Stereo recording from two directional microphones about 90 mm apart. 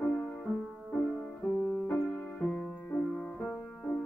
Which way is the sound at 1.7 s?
15° left (ahead or behind).